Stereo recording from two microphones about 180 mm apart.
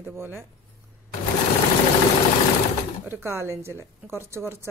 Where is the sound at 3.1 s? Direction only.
15° right (ahead or behind).